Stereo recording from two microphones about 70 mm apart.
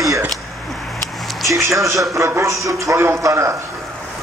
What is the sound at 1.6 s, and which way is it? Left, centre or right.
A man's voice, right.